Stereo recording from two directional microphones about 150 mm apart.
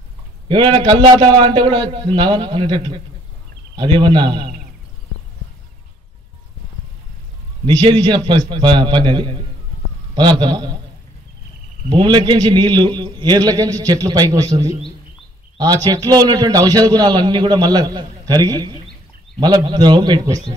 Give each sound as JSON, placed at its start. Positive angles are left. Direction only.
{"t": 0.5, "sound": "a man's voice", "side_deg": -30}
{"t": 7.6, "sound": "a man's voice", "side_deg": -30}
{"t": 11.9, "sound": "a man's voice", "side_deg": -30}